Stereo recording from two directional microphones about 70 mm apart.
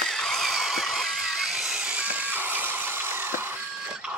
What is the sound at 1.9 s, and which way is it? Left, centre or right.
Music, centre.